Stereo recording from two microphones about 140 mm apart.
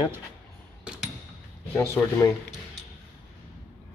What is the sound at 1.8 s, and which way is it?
Speech, 20° left (ahead or behind).